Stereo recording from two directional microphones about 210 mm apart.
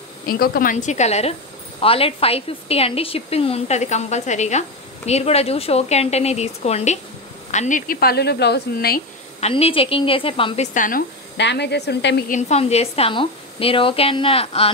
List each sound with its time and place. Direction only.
0.3 s a woman's voice: 45° left (ahead or behind)
9.4 s a woman's voice: 25° left (ahead or behind)
11.3 s speech: 55° left (ahead or behind)
12.3 s a woman's voice: 35° left (ahead or behind)